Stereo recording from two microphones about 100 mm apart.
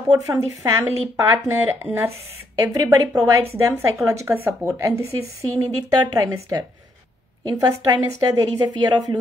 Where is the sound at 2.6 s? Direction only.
35° right (ahead or behind).